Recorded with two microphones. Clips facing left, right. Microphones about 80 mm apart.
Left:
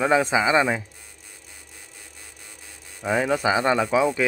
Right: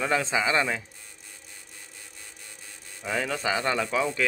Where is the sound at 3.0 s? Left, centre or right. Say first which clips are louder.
Left 7 dB; centre.